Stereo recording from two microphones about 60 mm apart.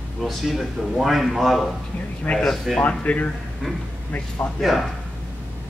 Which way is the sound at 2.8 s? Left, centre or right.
Left.